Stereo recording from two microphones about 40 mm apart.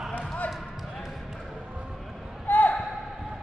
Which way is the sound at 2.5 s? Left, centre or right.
Left.